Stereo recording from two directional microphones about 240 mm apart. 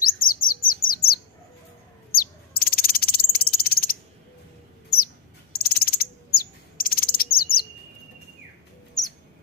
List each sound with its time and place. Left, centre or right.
0.0 s bird: left
2.1 s cricket: left
4.9 s bird: left
6.8 s chirp: left